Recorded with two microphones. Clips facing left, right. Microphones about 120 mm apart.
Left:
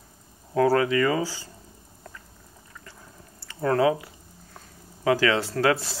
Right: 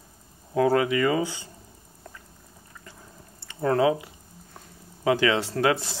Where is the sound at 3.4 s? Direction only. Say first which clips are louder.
Even; 25° right (ahead or behind).